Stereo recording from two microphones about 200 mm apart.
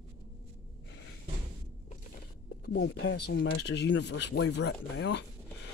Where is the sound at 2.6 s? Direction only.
55° left (ahead or behind).